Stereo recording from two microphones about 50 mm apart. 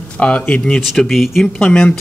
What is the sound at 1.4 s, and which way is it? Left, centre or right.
Speech, centre.